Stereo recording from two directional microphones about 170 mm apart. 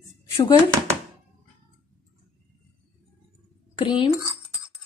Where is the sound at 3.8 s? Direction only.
30° left (ahead or behind).